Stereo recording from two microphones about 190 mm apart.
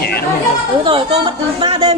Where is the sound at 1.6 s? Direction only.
30° right (ahead or behind).